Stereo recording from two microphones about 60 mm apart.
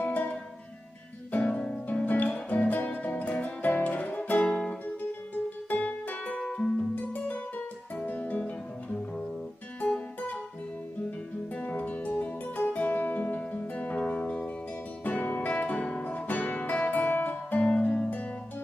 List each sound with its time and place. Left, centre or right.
0.0 s music: left
4.8 s music: left
6.4 s music: centre
7.0 s music: left
9.8 s music: left
15.0 s guitar: left